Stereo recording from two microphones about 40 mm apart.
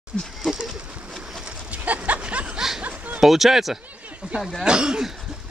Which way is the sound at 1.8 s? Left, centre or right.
Right.